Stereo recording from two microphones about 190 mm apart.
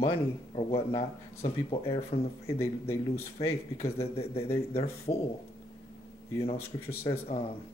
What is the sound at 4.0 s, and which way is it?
Speech, 30° left (ahead or behind).